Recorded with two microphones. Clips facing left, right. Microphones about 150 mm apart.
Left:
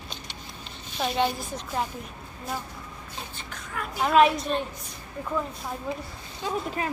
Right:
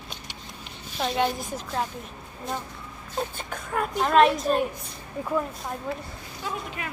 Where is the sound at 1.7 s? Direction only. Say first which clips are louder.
Even; 10° left (ahead or behind).